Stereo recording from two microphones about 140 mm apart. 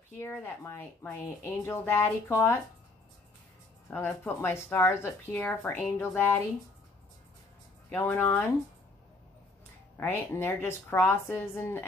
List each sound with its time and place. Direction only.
0.2 s speech: 15° left (ahead or behind)
3.9 s speech: 15° left (ahead or behind)
7.9 s speech: 15° left (ahead or behind)
9.9 s speech: 15° left (ahead or behind)